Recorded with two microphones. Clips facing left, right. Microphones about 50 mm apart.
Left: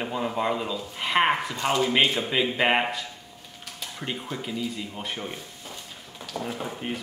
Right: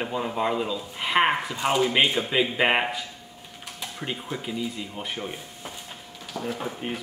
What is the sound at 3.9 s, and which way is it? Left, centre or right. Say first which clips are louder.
Speech: even; centre.